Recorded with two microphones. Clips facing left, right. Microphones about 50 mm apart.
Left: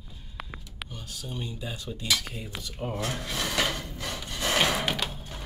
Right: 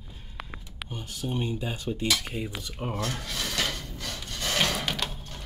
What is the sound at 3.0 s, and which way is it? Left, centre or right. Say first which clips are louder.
Rub: left 3 dB; centre.